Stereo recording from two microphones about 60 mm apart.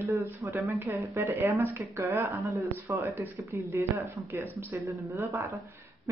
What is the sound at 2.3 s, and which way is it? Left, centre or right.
Speech, right.